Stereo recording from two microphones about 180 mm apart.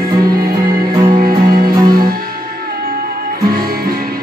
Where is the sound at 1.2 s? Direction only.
55° right (ahead or behind).